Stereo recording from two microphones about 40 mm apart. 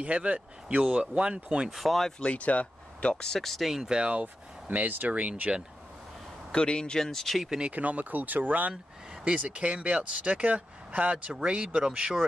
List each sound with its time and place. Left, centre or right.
0.0 s speech: right
1.7 s speech: centre
2.1 s speech: left
3.2 s speech: centre
3.8 s speech: centre
4.1 s speech: right
5.0 s speech: right
6.5 s speech: left
7.1 s speech: centre
7.4 s speech: centre
7.7 s speech: right
9.2 s speech: right